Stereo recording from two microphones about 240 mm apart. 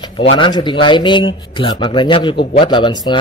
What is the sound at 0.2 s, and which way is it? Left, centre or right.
Speech, left.